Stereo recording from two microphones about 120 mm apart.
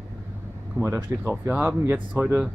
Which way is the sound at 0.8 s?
20° right (ahead or behind).